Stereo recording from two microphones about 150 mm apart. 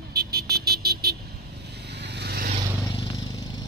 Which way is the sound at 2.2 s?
90° right.